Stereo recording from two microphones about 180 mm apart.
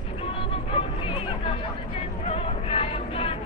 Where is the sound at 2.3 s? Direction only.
35° left (ahead or behind).